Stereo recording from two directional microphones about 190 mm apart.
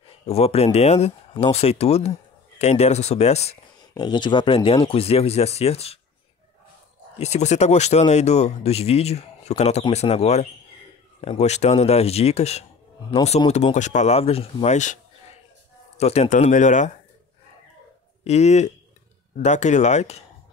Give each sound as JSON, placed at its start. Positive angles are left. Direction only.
{"t": 0.3, "sound": "speech", "side_deg": 30}
{"t": 3.9, "sound": "speech", "side_deg": 25}
{"t": 7.2, "sound": "speech", "side_deg": 35}
{"t": 16.0, "sound": "speech", "side_deg": 35}
{"t": 18.2, "sound": "speech", "side_deg": 35}